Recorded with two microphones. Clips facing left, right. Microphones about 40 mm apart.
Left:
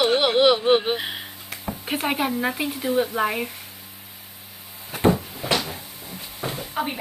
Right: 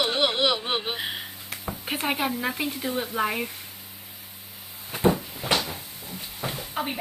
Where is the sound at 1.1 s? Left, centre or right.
Centre.